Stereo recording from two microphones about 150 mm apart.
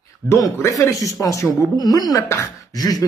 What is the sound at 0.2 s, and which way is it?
Speech, 65° right (ahead or behind).